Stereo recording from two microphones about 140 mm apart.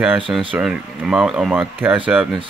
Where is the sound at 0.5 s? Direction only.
5° right (ahead or behind).